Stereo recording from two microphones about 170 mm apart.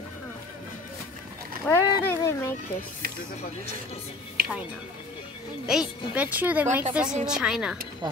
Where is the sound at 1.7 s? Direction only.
15° left (ahead or behind).